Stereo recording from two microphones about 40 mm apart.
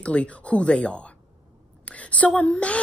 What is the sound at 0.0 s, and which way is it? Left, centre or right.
A woman's voice, left.